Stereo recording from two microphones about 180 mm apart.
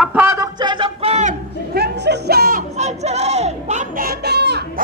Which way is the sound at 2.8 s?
40° right (ahead or behind).